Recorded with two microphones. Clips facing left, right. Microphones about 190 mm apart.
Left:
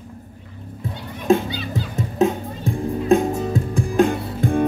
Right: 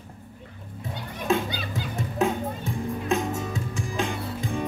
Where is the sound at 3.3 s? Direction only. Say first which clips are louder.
Left 8 dB; 35° left (ahead or behind).